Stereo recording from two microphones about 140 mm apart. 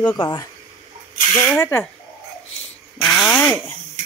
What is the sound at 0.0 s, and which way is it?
Speech, 30° left (ahead or behind).